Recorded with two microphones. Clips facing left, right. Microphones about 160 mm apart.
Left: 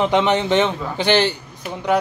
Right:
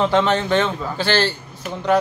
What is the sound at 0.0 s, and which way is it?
A man's voice, 15° left (ahead or behind).